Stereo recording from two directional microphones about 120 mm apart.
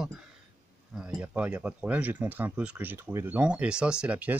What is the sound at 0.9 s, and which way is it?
Speech, 10° right (ahead or behind).